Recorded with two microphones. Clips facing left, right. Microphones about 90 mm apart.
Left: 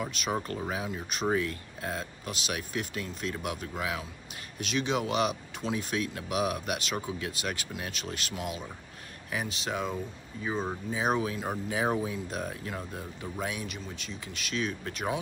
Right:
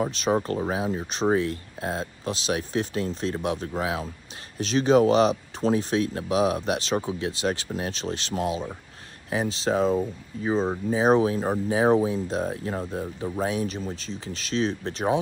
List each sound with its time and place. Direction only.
0.0 s speech: 30° right (ahead or behind)